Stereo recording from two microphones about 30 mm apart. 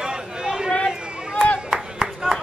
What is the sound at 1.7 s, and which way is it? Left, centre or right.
Music, centre.